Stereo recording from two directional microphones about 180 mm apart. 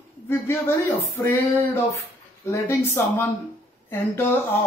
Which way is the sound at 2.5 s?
15° left (ahead or behind).